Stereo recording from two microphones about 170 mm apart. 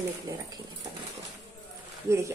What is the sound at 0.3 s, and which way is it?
Speech, 20° right (ahead or behind).